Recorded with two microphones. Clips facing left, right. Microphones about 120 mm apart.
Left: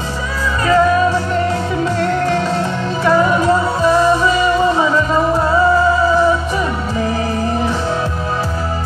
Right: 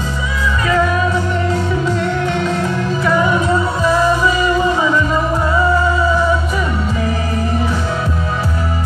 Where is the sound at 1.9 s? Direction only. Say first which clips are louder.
Left 2 dB; 35° left (ahead or behind).